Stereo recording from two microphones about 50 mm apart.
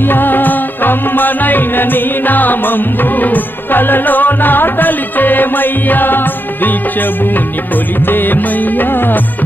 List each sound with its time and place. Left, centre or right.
0.0 s music: left